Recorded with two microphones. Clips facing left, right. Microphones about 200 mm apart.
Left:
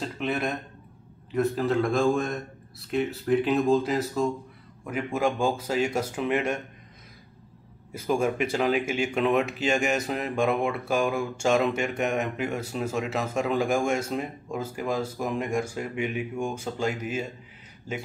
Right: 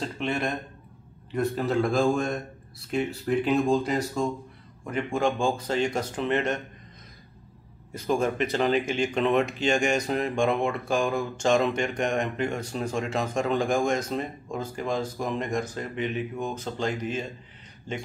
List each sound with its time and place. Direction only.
0.0 s speech: centre (ahead or behind)
7.9 s speech: 10° left (ahead or behind)